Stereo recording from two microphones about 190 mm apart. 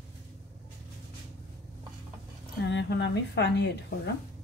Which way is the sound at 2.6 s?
65° left (ahead or behind).